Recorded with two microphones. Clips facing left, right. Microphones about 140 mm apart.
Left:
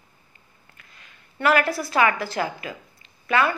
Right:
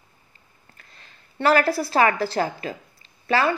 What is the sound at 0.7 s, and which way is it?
A woman's voice, 35° right (ahead or behind).